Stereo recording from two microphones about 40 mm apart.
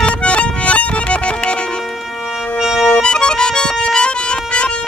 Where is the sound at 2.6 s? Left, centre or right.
Centre.